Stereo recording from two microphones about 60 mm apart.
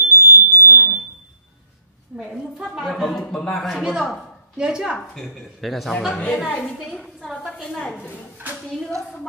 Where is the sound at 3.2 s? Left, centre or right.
Centre.